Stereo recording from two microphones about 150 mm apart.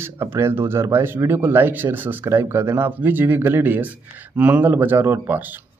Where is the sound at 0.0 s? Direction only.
15° right (ahead or behind).